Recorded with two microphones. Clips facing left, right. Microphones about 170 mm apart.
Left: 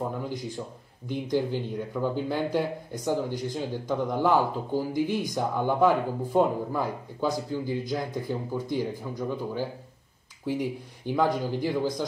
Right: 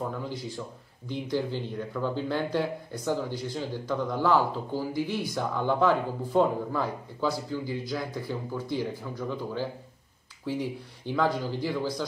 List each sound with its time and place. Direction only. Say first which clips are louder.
0.2 s speech: left 2 dB; 15° left (ahead or behind)